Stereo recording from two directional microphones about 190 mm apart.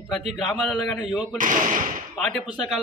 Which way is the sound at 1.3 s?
45° right (ahead or behind).